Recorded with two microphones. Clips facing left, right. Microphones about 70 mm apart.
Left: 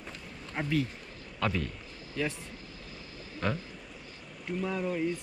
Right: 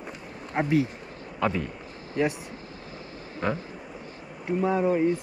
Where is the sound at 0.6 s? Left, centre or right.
Right.